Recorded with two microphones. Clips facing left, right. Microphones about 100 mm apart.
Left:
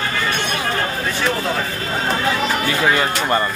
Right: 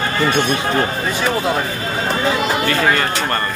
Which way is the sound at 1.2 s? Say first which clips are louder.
Right 3 dB; 15° right (ahead or behind).